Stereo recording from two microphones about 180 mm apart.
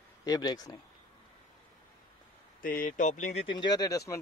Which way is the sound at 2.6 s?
50° left (ahead or behind).